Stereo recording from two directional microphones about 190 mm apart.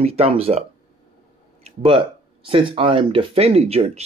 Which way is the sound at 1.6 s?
30° right (ahead or behind).